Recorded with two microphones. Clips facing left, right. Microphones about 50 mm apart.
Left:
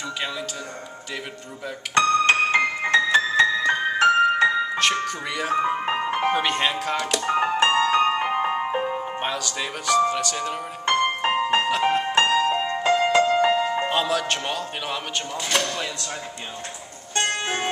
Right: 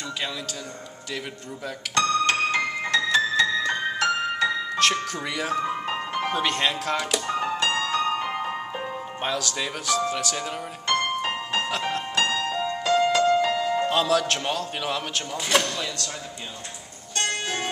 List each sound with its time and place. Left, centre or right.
2.0 s music: left
5.0 s speech: centre
5.6 s music: left
7.2 s music: left; by 10.6 s centre
11.1 s music: left
13.9 s a man's voice: centre
15.3 s speech: centre
15.6 s a man's voice: centre
17.1 s music: left